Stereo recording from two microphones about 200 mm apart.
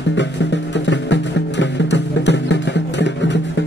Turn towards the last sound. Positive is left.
turn(degrees=60)  # may be behind; listen again after turning